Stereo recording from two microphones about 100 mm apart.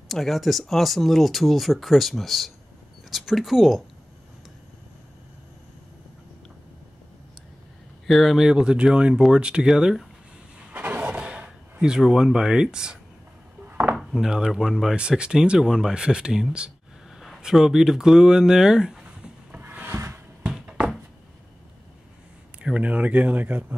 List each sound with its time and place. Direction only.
0.1 s speech: centre (ahead or behind)
8.1 s speech: 5° right (ahead or behind)
10.7 s a sound: 15° right (ahead or behind)
13.7 s dishes: 15° right (ahead or behind)
13.9 s speech: 5° right (ahead or behind)
19.6 s wood: 20° right (ahead or behind)
20.4 s a sound: 5° right (ahead or behind)
22.6 s speech: 10° right (ahead or behind)